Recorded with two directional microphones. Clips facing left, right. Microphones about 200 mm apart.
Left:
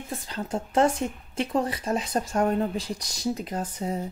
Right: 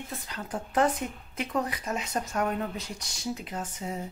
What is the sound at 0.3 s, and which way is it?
Speech, 25° left (ahead or behind).